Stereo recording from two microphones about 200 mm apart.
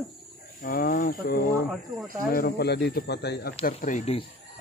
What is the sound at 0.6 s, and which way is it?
Speech, 45° left (ahead or behind).